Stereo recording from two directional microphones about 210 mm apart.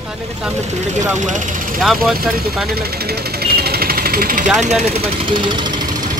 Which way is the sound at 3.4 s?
50° right (ahead or behind).